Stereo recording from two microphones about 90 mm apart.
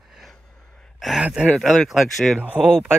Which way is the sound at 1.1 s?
10° right (ahead or behind).